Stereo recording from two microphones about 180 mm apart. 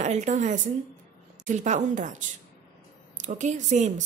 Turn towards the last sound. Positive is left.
turn(degrees=-40)  # may be behind; listen again after turning